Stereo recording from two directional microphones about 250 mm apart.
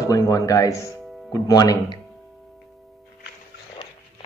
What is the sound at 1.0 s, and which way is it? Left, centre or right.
Music, centre.